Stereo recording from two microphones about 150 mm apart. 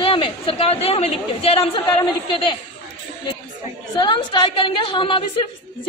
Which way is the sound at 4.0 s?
30° left (ahead or behind).